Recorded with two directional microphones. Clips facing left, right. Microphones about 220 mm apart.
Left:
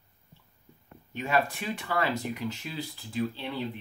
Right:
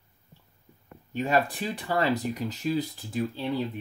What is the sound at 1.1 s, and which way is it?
Speech, 35° right (ahead or behind).